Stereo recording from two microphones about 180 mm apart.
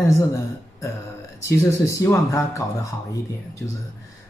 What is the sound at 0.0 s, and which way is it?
Speech, 15° left (ahead or behind).